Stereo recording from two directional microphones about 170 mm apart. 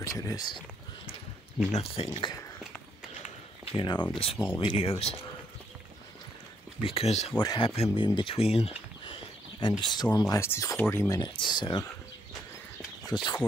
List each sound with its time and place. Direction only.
0.0 s speech: 20° left (ahead or behind)
1.7 s speech: 35° left (ahead or behind)
3.7 s speech: 25° left (ahead or behind)
6.8 s speech: 35° left (ahead or behind)
7.3 s speech: 30° left (ahead or behind)
13.1 s speech: 25° left (ahead or behind)